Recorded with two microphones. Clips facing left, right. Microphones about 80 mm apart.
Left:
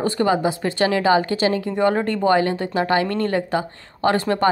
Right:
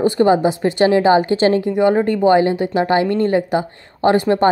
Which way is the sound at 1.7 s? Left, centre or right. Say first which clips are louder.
Right 5 dB; centre.